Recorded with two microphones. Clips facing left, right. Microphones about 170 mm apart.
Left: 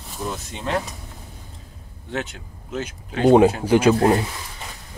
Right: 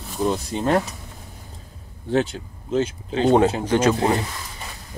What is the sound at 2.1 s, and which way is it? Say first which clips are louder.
Speech: right 8 dB; 35° right (ahead or behind).